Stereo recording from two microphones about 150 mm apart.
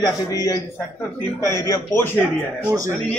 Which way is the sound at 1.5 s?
20° left (ahead or behind).